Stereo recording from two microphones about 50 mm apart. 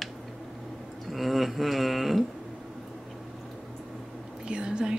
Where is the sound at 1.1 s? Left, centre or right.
Centre.